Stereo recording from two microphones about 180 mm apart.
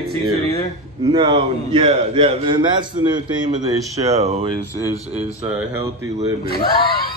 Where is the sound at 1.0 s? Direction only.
25° right (ahead or behind).